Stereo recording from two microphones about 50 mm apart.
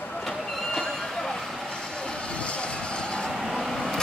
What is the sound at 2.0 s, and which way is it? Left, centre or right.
Vehicle, left.